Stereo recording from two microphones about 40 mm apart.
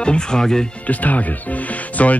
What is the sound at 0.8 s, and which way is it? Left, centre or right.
Speech, left.